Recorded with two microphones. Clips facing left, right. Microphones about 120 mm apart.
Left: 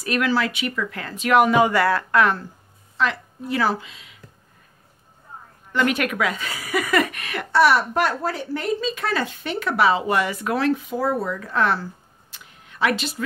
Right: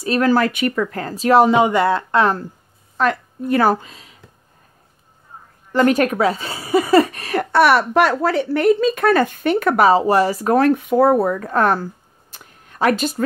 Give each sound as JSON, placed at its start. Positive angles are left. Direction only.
{"t": 0.0, "sound": "speech", "side_deg": -30}
{"t": 0.3, "sound": "speech", "side_deg": -50}
{"t": 3.0, "sound": "speech", "side_deg": -50}
{"t": 5.7, "sound": "speech", "side_deg": -40}
{"t": 7.5, "sound": "speech", "side_deg": -65}